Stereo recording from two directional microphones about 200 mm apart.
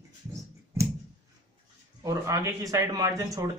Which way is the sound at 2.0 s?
15° right (ahead or behind).